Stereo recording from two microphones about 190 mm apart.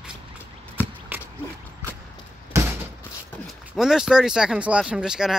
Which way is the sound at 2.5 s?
15° right (ahead or behind).